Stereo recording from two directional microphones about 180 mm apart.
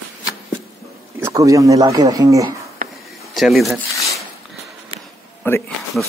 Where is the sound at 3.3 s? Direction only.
Centre (ahead or behind).